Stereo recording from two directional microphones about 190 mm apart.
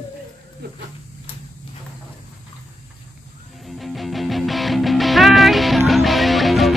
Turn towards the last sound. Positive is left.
turn(degrees=0)  # may be behind; listen again after turning